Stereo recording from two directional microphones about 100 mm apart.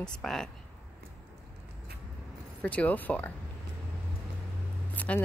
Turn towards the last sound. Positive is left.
turn(degrees=15)  # may be behind; listen again after turning